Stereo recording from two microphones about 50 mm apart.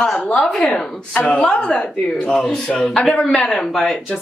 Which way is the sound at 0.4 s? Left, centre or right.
Centre.